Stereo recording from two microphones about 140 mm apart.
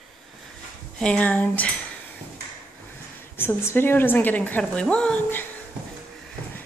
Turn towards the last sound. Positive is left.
turn(degrees=10)  # may be behind; listen again after turning